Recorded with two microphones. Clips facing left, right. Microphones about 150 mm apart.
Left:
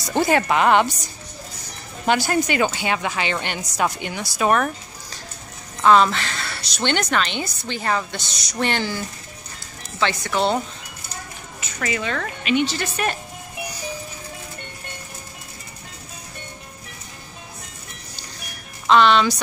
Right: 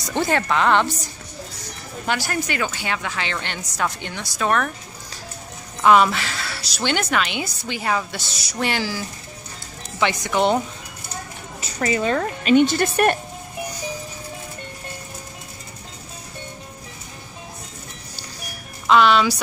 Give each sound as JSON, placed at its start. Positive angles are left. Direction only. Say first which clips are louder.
{"t": 0.1, "sound": "a woman's voice", "louder": "left 2 dB", "side_deg": 10}
{"t": 2.0, "sound": "a woman's voice", "louder": "left 5 dB", "side_deg": 20}
{"t": 5.8, "sound": "speech", "louder": "even", "side_deg": -10}
{"t": 9.9, "sound": "speech", "louder": "right 1 dB", "side_deg": -15}
{"t": 11.6, "sound": "speech", "louder": "right 5 dB", "side_deg": -35}
{"t": 18.9, "sound": "speech", "louder": "even", "side_deg": -5}